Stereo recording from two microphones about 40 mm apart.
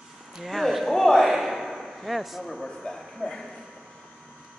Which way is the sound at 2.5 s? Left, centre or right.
Centre.